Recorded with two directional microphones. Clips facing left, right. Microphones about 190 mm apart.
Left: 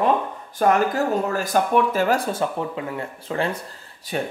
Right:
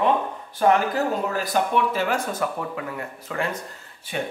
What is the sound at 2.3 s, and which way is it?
Speech, 25° left (ahead or behind).